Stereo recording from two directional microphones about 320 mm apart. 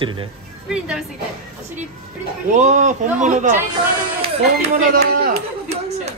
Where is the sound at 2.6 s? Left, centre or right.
Right.